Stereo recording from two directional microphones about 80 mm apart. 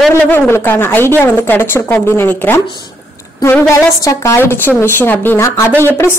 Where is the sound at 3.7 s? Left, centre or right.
Left.